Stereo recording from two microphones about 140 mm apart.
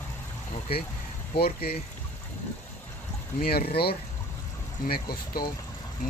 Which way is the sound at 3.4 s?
90° left.